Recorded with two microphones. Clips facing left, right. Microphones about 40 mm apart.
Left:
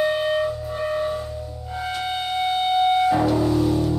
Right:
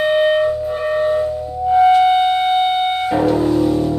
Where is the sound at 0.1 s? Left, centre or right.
Right.